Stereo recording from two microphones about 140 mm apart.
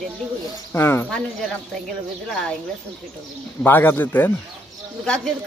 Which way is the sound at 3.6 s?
15° left (ahead or behind).